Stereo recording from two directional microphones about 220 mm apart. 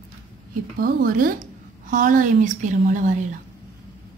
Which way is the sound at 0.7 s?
40° right (ahead or behind).